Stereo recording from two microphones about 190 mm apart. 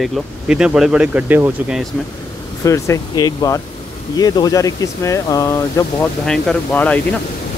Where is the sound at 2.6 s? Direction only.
15° left (ahead or behind).